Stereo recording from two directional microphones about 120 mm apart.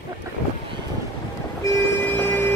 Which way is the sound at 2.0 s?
15° left (ahead or behind).